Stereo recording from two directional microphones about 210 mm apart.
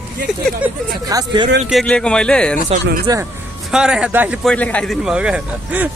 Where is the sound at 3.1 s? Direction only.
20° right (ahead or behind).